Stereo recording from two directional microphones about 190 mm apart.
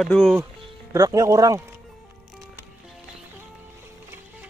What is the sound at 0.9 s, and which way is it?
Speech, 20° right (ahead or behind).